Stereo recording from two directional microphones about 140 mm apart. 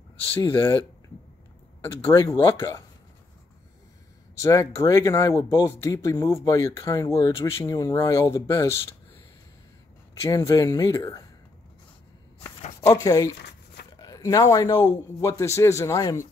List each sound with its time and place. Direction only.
0.4 s speech: 20° left (ahead or behind)
4.4 s speech: 25° left (ahead or behind)
10.3 s speech: 25° left (ahead or behind)
12.8 s speech: 25° left (ahead or behind)